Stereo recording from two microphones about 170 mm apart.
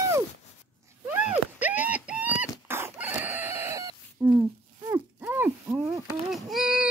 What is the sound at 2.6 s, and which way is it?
Chicken, 15° right (ahead or behind).